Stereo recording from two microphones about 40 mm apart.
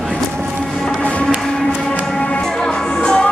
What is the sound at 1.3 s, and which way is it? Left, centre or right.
Music, centre.